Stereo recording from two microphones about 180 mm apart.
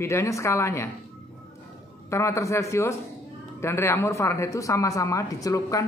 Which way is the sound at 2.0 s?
15° left (ahead or behind).